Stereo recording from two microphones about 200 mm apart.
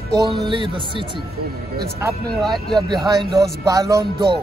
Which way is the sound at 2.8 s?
20° right (ahead or behind).